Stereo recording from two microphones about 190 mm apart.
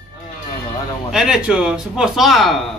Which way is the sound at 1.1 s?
5° right (ahead or behind).